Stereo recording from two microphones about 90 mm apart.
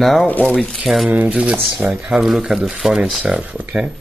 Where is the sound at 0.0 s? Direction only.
Centre (ahead or behind).